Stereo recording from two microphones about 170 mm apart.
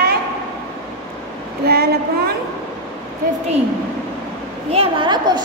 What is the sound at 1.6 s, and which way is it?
Speech, 65° right (ahead or behind).